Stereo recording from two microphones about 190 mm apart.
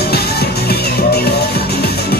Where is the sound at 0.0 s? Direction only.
55° left (ahead or behind).